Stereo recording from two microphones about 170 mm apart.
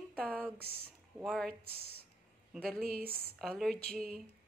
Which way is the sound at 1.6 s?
65° right (ahead or behind).